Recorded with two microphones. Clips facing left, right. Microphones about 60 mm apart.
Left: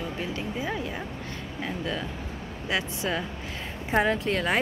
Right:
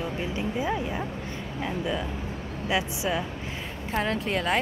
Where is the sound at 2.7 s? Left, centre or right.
Centre.